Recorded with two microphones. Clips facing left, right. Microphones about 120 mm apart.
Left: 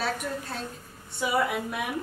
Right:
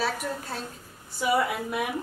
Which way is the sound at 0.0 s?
Centre (ahead or behind).